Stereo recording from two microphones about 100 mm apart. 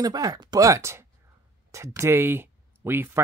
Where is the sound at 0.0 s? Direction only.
40° right (ahead or behind).